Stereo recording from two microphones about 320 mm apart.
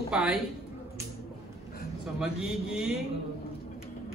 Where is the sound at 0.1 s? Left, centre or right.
Centre.